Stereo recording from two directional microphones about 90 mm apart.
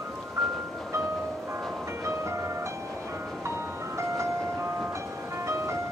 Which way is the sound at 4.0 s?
35° right (ahead or behind).